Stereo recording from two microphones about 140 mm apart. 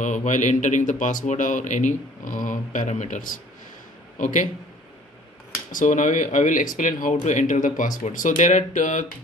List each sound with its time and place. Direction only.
0.0 s speech: 65° left (ahead or behind)
5.7 s speech: 65° left (ahead or behind)